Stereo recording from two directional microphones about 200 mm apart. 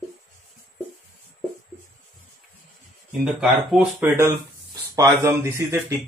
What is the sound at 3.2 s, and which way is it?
Speech, centre (ahead or behind).